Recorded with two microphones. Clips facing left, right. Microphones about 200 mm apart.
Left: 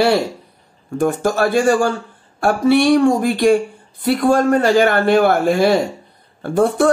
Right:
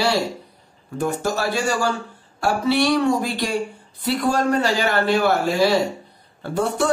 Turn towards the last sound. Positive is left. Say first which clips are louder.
# left 7 dB
turn(degrees=50)  # may be behind; listen again after turning